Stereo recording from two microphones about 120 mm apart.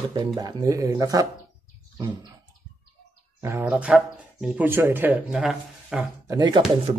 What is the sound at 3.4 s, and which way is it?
Speech, 20° right (ahead or behind).